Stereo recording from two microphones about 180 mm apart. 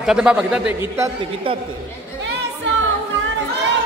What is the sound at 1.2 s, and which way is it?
Speech, 30° right (ahead or behind).